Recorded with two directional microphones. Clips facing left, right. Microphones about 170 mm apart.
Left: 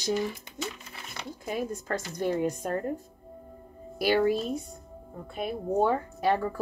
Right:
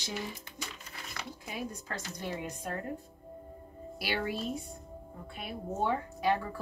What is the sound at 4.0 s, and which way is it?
A woman's voice, 45° left (ahead or behind).